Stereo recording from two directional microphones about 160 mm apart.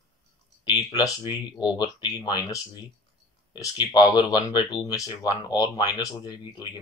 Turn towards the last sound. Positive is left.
turn(degrees=20)  # may be behind; listen again after turning